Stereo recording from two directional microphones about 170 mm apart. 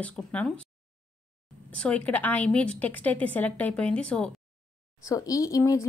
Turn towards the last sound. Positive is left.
turn(degrees=20)  # may be behind; listen again after turning